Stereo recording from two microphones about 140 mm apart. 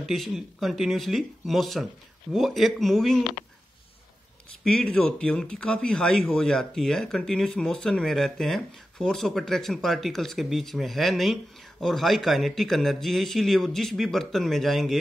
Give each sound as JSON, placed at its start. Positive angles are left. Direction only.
{"t": 0.1, "sound": "speech", "side_deg": 0}
{"t": 4.6, "sound": "speech", "side_deg": 5}